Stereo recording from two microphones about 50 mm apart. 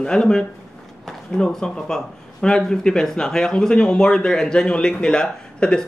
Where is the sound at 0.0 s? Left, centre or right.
Centre.